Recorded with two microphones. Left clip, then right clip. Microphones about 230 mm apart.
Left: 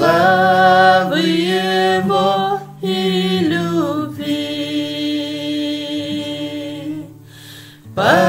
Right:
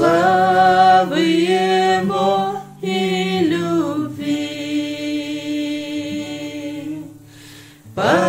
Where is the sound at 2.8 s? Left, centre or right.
Centre.